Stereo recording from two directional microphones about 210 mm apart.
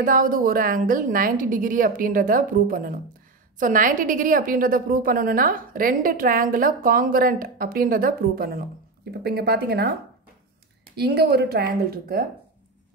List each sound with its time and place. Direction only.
0.0 s a woman's voice: 40° right (ahead or behind)
11.0 s a woman's voice: 50° right (ahead or behind)